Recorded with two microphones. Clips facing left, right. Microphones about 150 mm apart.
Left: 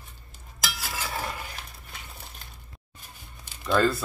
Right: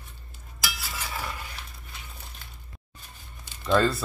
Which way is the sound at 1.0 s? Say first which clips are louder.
Left 2 dB; 45° left (ahead or behind).